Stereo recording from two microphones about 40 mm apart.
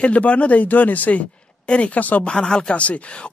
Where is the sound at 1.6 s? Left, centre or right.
Left.